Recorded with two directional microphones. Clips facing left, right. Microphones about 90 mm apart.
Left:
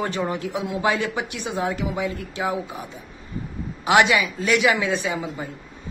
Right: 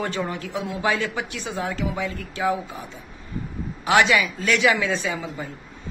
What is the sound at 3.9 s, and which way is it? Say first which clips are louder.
A woman's voice: left 1 dB; 20° left (ahead or behind).